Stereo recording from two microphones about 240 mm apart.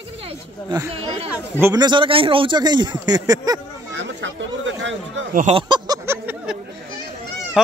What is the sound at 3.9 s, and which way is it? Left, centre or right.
Chatter, right.